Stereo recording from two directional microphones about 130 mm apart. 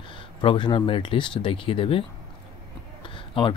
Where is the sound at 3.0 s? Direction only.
40° left (ahead or behind).